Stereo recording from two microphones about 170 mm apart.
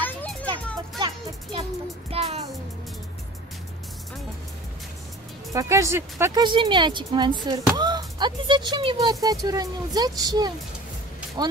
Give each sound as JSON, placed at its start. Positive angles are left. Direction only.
{"t": 0.0, "sound": "children playing", "side_deg": 10}
{"t": 0.9, "sound": "music", "side_deg": -30}
{"t": 5.5, "sound": "speech", "side_deg": -20}
{"t": 6.4, "sound": "speech", "side_deg": -30}